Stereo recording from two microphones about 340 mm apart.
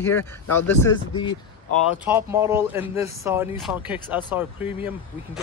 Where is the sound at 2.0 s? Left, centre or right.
Centre.